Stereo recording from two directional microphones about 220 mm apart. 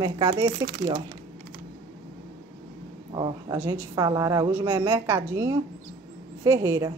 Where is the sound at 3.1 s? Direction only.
20° right (ahead or behind).